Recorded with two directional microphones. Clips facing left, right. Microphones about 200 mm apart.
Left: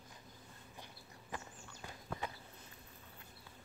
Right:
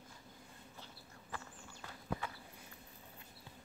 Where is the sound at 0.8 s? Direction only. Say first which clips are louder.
Even; 15° left (ahead or behind).